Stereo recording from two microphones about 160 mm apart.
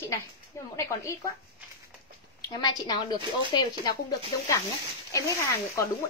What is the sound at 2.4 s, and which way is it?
Speech, 25° left (ahead or behind).